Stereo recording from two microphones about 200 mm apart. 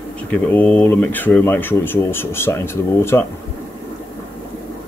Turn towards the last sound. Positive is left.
turn(degrees=10)  # may be behind; listen again after turning